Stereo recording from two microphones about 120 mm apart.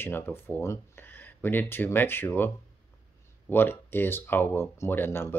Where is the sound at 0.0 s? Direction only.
20° left (ahead or behind).